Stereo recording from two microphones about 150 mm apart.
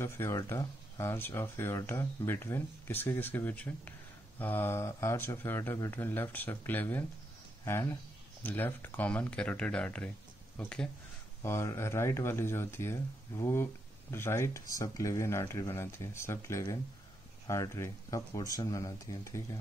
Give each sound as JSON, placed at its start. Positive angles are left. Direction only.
{"t": 0.0, "sound": "speech", "side_deg": 20}
{"t": 11.4, "sound": "speech", "side_deg": 20}